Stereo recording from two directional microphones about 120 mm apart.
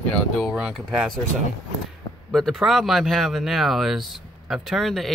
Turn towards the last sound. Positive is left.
turn(degrees=0)  # may be behind; listen again after turning